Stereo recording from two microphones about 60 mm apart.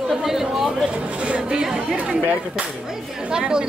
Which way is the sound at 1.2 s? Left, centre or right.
Centre.